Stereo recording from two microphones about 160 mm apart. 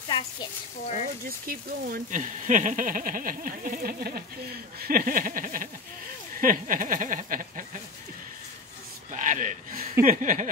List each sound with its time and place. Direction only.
1.5 s speech: 55° right (ahead or behind)
9.1 s speech: 50° right (ahead or behind)
10.0 s a sound: 55° right (ahead or behind)